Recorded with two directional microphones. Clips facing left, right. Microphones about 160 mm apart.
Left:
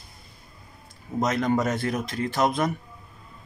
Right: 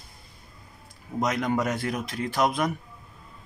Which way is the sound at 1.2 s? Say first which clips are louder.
Left 2 dB; 10° right (ahead or behind).